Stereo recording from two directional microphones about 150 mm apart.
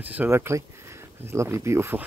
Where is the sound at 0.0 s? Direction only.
10° right (ahead or behind).